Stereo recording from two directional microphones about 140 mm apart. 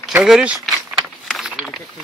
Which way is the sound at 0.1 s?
5° right (ahead or behind).